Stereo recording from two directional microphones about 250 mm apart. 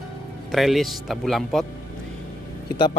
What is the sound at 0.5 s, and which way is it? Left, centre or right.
A man's voice, centre.